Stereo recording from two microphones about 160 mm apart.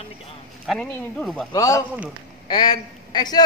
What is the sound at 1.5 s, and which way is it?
A man's voice, 20° left (ahead or behind).